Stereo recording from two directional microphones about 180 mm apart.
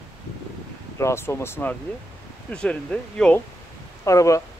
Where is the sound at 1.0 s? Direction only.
15° left (ahead or behind).